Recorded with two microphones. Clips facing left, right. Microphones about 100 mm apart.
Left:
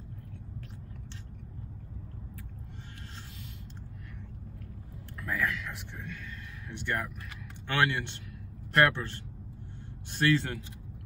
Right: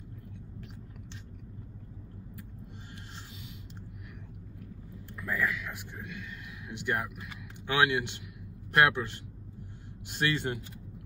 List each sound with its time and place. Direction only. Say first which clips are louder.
5.2 s a man's voice: even; centre (ahead or behind)